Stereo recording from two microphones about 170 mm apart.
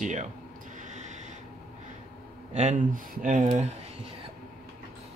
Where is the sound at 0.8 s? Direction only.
45° right (ahead or behind).